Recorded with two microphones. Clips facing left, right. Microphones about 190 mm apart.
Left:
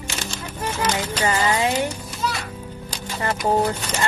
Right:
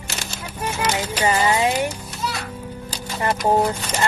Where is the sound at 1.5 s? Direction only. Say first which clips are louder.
Right 1 dB; 20° right (ahead or behind).